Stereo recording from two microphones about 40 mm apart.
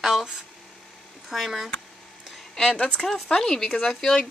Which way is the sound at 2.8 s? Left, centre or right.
Left.